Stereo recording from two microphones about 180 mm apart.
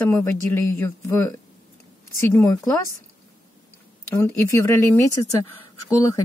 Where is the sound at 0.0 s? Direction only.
15° left (ahead or behind).